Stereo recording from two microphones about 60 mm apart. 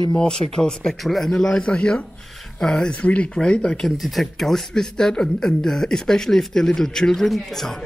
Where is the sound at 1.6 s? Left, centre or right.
Centre.